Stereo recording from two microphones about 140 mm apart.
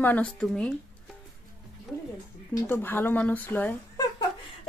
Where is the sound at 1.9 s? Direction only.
Centre (ahead or behind).